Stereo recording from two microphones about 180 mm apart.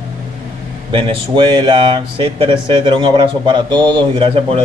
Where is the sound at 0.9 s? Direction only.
25° right (ahead or behind).